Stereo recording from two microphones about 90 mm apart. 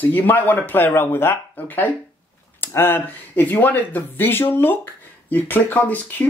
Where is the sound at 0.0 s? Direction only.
20° left (ahead or behind).